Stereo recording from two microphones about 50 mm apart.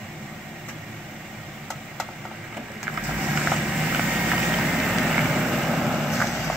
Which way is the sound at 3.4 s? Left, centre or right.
Centre.